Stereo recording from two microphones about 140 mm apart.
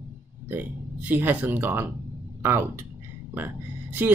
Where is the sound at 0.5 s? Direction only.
15° right (ahead or behind).